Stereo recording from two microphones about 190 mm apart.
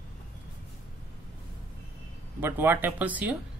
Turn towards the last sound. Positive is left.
turn(degrees=-10)  # may be behind; listen again after turning